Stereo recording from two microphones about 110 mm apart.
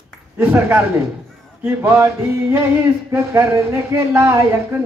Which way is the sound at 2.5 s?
20° right (ahead or behind).